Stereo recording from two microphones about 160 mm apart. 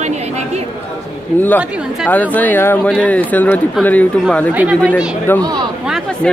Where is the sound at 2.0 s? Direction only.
10° left (ahead or behind).